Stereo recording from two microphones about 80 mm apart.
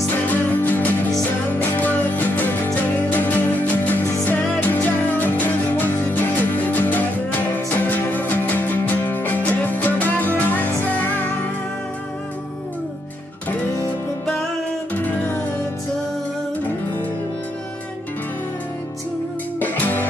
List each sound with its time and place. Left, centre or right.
0.3 s music: left
15.0 s music: left
19.6 s music: left